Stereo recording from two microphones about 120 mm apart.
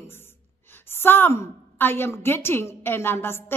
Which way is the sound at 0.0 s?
20° left (ahead or behind).